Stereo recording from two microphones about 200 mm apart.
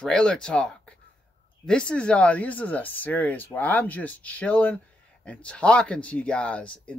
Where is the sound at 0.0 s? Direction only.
5° left (ahead or behind).